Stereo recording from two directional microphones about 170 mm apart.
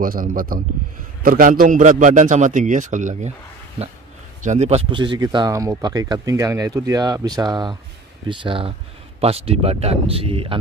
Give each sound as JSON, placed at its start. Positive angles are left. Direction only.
{"t": 0.0, "sound": "a man's voice", "side_deg": -55}
{"t": 4.5, "sound": "speech", "side_deg": -40}